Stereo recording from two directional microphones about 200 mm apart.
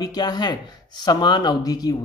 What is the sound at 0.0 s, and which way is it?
A man's voice, 20° left (ahead or behind).